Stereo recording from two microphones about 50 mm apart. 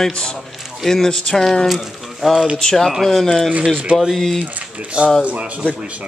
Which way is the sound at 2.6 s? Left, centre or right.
Centre.